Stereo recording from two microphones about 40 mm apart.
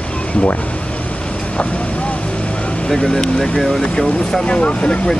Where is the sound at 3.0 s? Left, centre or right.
Left.